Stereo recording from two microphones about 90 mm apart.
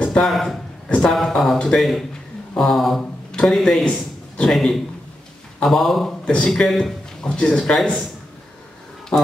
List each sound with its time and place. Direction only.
0.0 s a sound: 10° left (ahead or behind)
0.3 s a man's voice: centre (ahead or behind)
9.1 s speech: 10° left (ahead or behind)